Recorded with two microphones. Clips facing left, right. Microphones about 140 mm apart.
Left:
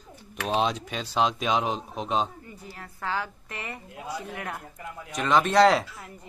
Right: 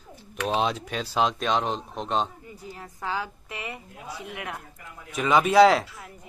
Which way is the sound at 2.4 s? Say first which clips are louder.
Right 2 dB; 15° right (ahead or behind).